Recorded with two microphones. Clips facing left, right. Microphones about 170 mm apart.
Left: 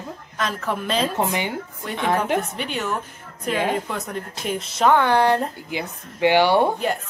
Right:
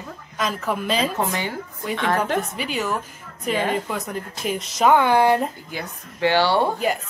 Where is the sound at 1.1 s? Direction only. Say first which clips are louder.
Left 1 dB; 20° left (ahead or behind).